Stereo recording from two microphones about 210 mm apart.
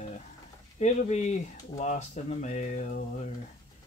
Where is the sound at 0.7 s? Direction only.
35° left (ahead or behind).